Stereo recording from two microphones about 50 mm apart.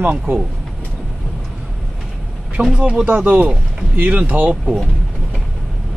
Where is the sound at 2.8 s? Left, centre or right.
Right.